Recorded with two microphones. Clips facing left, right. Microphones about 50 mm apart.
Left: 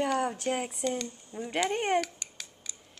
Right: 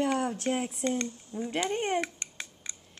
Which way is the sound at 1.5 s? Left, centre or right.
Left.